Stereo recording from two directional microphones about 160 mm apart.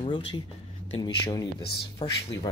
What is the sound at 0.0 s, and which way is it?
Speech, 30° left (ahead or behind).